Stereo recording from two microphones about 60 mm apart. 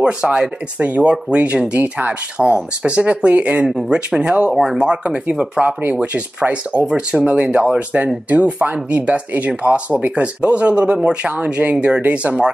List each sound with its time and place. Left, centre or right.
0.0 s speech: centre
2.3 s speech: centre
3.6 s speech: centre
6.4 s speech: right